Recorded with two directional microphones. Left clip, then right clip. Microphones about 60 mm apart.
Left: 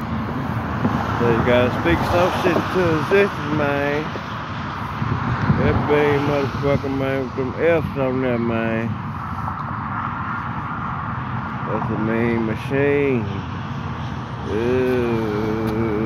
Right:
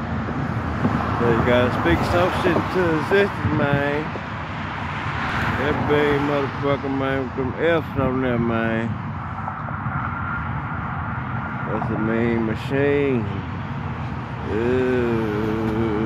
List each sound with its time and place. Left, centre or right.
1.1 s speech: centre
1.4 s speech: centre
2.4 s speech: left
5.3 s vehicle: centre
5.9 s speech: centre
6.2 s speech: left
6.6 s speech: left
7.0 s speech: left
7.6 s speech: centre
11.7 s speech: centre
14.5 s speech: left
15.1 s speech: left